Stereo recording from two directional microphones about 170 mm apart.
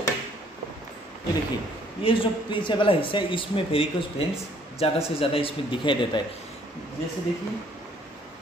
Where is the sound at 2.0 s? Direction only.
30° left (ahead or behind).